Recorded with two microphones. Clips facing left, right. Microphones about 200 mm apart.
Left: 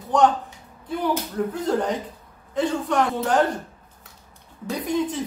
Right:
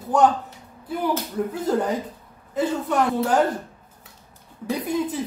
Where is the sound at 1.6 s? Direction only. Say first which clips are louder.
Right 2 dB; 5° right (ahead or behind).